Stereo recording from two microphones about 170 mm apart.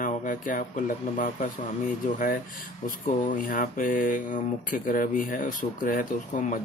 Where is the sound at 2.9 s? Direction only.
50° left (ahead or behind).